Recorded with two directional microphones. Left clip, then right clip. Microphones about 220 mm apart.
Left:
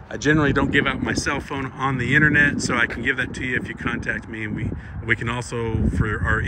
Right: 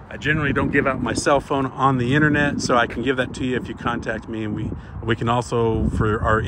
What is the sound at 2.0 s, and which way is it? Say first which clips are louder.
Speech: left 2 dB; 50° right (ahead or behind).